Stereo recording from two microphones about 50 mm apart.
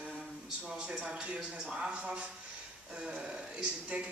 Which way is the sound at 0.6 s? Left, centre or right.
Centre.